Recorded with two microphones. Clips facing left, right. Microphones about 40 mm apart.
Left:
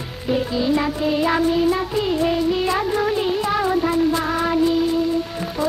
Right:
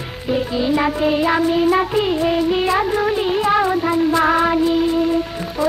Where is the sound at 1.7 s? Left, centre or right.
Right.